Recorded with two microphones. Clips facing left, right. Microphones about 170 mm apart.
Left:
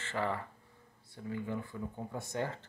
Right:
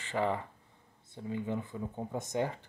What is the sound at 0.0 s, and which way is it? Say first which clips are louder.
Speech: right 3 dB; 15° right (ahead or behind).